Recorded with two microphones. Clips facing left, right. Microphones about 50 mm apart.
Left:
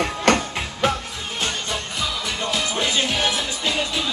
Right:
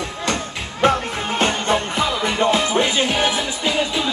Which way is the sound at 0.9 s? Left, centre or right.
Right.